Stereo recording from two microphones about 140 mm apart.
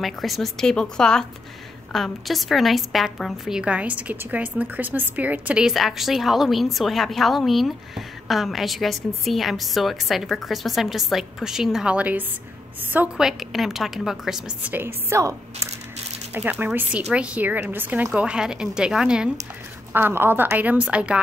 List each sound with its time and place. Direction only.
0.0 s a woman's voice: centre (ahead or behind)